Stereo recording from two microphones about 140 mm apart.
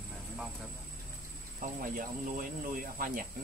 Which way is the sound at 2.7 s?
80° right.